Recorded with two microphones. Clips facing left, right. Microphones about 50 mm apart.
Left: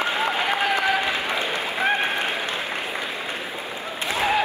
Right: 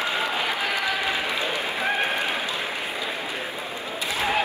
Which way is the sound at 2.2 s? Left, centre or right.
Left.